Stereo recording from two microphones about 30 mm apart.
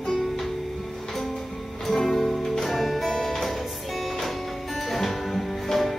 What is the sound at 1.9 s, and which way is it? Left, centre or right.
Music, centre.